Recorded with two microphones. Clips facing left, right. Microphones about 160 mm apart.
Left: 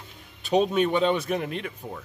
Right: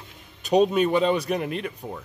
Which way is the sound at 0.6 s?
Centre (ahead or behind).